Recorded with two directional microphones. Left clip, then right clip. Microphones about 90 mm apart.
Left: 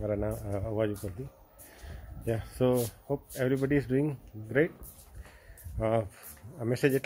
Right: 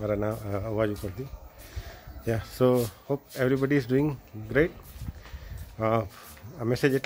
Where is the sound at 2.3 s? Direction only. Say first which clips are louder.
Right 4 dB; 30° right (ahead or behind).